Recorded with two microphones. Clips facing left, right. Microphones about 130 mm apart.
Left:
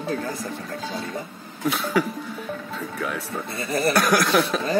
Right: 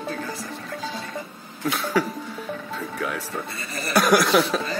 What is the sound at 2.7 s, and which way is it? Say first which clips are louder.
Music: even; centre (ahead or behind).